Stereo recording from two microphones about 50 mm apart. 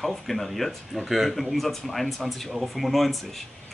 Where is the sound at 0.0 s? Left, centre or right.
Centre.